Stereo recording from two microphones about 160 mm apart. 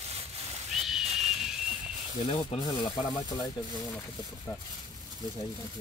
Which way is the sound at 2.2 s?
40° left (ahead or behind).